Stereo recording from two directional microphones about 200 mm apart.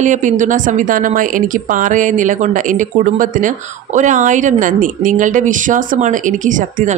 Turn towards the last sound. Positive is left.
turn(degrees=-40)  # may be behind; listen again after turning